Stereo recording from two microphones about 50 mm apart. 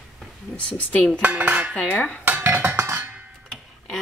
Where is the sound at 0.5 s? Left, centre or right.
Left.